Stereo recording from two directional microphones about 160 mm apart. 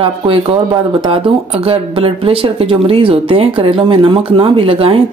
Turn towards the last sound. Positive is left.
turn(degrees=-35)  # may be behind; listen again after turning